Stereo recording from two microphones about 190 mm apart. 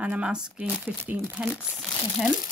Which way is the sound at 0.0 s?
5° right (ahead or behind).